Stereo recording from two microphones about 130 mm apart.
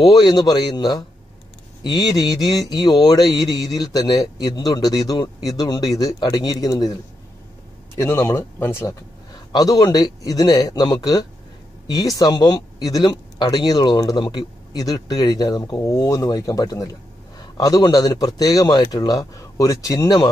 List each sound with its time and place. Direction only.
0.0 s a man's voice: 30° left (ahead or behind)
8.0 s speech: 20° left (ahead or behind)
9.3 s speech: 30° left (ahead or behind)